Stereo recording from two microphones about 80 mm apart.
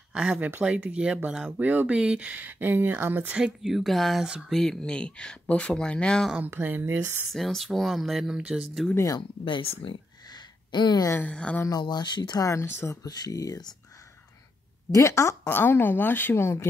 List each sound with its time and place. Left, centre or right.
0.1 s speech: centre
3.3 s speech: centre
6.5 s speech: right
7.2 s speech: centre
9.5 s a sound: left
11.1 s speech: centre
11.7 s speech: left
12.4 s speech: left
13.1 s speech: left
14.9 s speech: left